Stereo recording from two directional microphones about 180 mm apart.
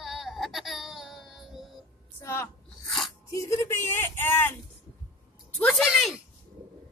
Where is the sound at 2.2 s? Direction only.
15° left (ahead or behind).